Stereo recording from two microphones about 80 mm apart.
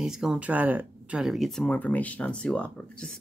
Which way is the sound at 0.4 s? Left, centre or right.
Centre.